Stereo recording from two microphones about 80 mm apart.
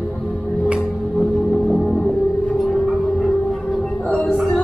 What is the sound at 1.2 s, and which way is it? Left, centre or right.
Music, centre.